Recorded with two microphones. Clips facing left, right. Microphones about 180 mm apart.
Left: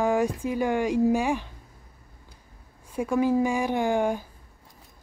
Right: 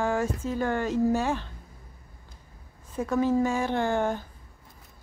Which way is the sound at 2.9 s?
10° left (ahead or behind).